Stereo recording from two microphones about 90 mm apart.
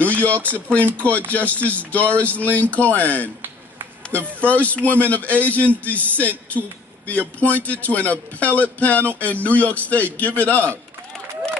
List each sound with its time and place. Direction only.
0.0 s a man's voice: 15° left (ahead or behind)
4.4 s a man's voice: 15° left (ahead or behind)